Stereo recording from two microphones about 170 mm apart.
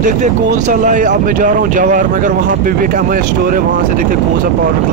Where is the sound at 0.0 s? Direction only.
45° right (ahead or behind).